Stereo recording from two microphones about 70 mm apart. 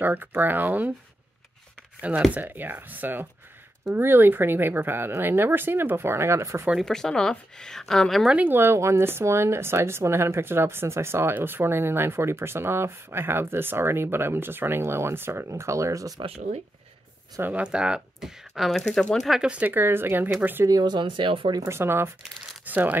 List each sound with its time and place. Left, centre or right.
0.0 s speech: right
2.0 s speech: centre; by 6.7 s right
6.8 s speech: centre
8.5 s speech: right
17.4 s speech: right
18.5 s speech: centre
19.5 s speech: right
20.6 s speech: right
21.6 s speech: right
22.7 s speech: right